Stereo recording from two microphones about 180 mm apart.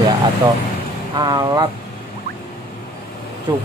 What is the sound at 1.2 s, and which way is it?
Speech, 25° right (ahead or behind).